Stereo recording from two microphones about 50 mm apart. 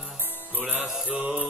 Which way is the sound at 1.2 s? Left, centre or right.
Right.